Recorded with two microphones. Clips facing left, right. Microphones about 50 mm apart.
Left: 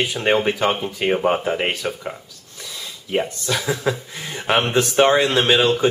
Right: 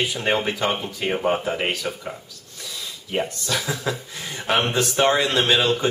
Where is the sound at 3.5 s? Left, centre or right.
Centre.